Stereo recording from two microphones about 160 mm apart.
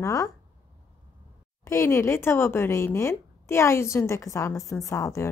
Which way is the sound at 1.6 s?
15° left (ahead or behind).